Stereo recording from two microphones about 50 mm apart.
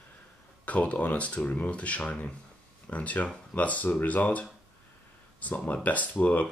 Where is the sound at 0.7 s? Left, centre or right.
Left.